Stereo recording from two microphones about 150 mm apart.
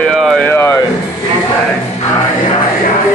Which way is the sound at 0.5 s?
15° left (ahead or behind).